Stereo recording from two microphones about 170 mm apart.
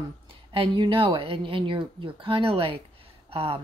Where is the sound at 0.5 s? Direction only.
30° right (ahead or behind).